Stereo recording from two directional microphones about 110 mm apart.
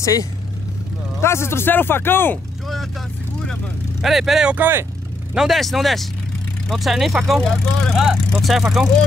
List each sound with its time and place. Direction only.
0.0 s speech: 35° left (ahead or behind)
4.0 s speech: centre (ahead or behind)
4.6 s speech: 20° right (ahead or behind)
5.3 s speech: 5° right (ahead or behind)